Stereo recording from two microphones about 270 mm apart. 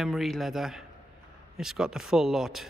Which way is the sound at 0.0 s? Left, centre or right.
Centre.